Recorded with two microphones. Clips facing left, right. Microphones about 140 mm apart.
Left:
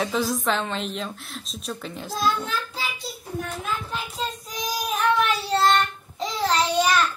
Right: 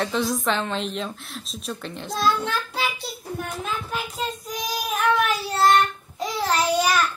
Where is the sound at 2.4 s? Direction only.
70° right (ahead or behind).